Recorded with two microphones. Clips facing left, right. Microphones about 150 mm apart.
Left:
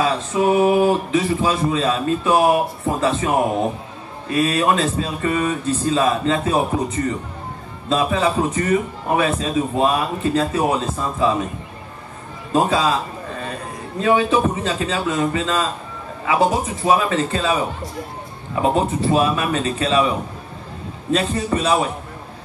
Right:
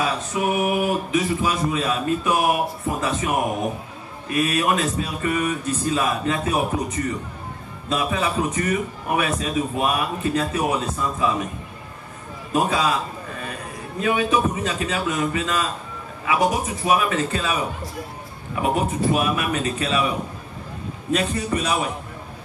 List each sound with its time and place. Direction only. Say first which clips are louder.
0.0 s speech: left 5 dB; 30° left (ahead or behind)
12.5 s a man's voice: left 3 dB; 30° left (ahead or behind)